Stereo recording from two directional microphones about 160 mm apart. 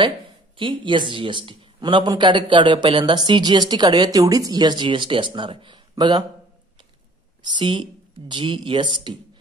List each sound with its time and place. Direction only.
0.6 s speech: 30° right (ahead or behind)
7.4 s speech: 30° right (ahead or behind)